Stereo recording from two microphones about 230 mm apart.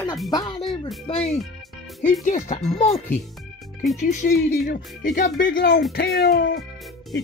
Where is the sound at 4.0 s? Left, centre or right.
Left.